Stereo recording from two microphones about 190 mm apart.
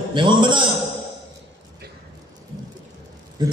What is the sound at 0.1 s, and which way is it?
Speech, 25° right (ahead or behind).